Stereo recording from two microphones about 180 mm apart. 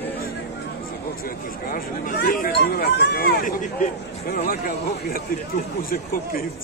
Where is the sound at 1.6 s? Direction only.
55° left (ahead or behind).